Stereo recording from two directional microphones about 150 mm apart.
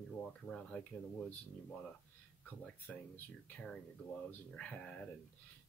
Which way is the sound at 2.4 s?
10° left (ahead or behind).